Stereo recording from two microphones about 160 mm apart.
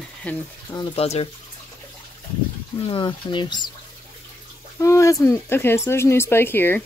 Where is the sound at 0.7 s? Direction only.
30° left (ahead or behind).